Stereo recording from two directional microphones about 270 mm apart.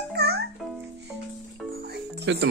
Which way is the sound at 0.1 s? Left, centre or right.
Right.